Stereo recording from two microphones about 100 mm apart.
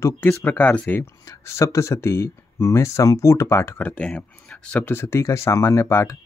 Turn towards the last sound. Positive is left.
turn(degrees=25)  # may be behind; listen again after turning